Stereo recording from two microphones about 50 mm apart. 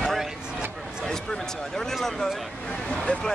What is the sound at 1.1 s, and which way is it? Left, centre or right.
Speech, centre.